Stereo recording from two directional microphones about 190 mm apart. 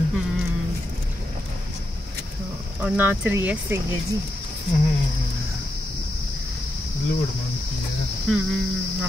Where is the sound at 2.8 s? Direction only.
10° right (ahead or behind).